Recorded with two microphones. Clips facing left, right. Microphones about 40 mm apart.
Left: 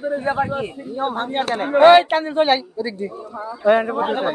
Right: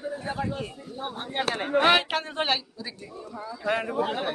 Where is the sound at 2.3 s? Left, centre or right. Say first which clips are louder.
Left 10 dB; left.